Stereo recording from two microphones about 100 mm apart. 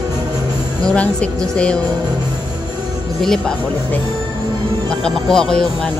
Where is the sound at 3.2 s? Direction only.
5° left (ahead or behind).